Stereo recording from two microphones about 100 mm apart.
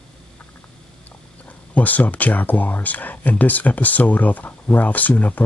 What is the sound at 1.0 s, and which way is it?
Speech, 15° left (ahead or behind).